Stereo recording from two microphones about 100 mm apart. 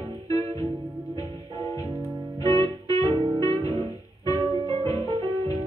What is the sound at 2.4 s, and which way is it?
Music, 35° left (ahead or behind).